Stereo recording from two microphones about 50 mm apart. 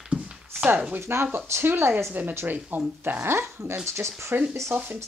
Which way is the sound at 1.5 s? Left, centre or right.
Right.